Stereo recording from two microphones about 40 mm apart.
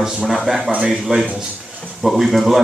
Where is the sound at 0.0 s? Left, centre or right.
Centre.